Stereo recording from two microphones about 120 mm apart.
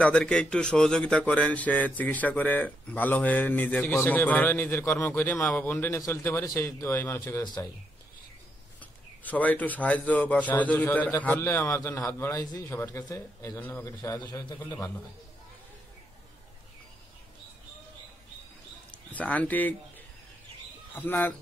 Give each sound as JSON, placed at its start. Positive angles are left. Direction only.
{"t": 0.0, "sound": "a man's voice", "side_deg": 5}
{"t": 9.2, "sound": "a man's voice", "side_deg": 15}
{"t": 18.9, "sound": "speech", "side_deg": 10}
{"t": 20.9, "sound": "a man's voice", "side_deg": 15}